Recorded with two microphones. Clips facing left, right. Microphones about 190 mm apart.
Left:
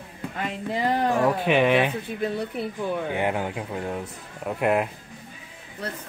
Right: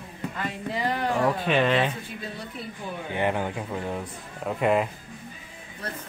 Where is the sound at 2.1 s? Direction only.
60° left (ahead or behind).